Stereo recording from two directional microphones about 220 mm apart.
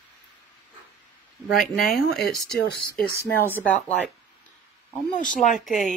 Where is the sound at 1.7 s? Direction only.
40° left (ahead or behind).